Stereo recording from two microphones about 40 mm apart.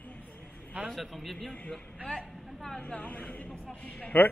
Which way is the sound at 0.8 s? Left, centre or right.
Centre.